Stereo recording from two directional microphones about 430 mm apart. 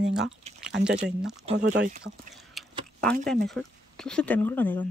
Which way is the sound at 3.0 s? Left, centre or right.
Centre.